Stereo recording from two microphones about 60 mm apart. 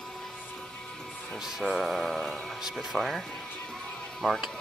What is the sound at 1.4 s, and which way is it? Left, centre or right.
Speech, centre.